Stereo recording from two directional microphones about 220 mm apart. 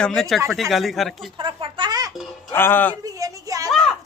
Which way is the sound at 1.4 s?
20° right (ahead or behind).